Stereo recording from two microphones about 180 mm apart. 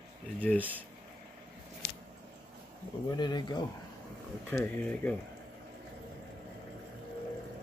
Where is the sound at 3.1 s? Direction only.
25° left (ahead or behind).